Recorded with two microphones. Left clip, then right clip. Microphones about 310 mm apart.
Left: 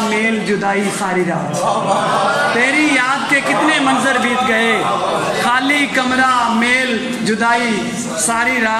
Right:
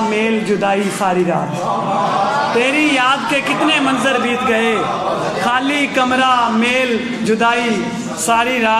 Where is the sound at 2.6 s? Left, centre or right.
Centre.